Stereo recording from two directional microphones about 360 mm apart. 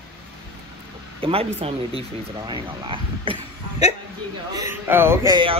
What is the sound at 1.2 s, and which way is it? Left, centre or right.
Speech, centre.